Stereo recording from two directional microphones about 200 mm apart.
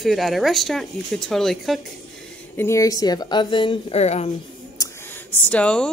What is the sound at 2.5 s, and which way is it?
A woman's voice, 15° left (ahead or behind).